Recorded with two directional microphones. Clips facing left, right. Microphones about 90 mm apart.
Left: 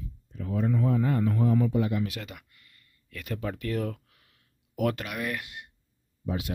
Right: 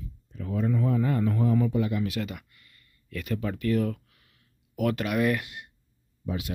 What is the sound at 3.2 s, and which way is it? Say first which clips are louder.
Speech: right 3 dB; 25° left (ahead or behind).